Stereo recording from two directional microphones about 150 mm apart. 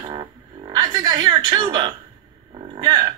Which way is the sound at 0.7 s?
25° right (ahead or behind).